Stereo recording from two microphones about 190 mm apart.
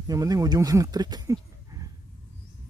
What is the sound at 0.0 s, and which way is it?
Speech, 20° right (ahead or behind).